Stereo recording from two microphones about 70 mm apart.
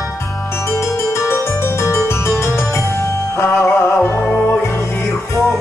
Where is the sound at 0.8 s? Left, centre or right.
Left.